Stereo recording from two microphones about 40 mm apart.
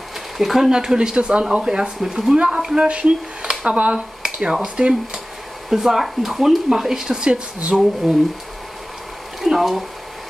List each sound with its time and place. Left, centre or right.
0.4 s speech: centre
0.7 s speech: centre
2.3 s speech: right
3.9 s speech: centre
5.7 s speech: centre
7.7 s speech: centre
9.4 s speech: centre